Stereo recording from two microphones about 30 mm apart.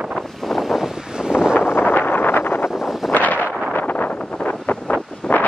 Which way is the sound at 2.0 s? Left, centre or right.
Left.